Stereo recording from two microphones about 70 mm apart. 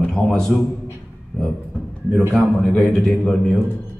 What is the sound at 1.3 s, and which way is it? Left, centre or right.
A man's voice, centre.